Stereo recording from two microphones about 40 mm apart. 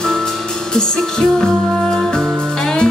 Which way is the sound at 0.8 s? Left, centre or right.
Centre.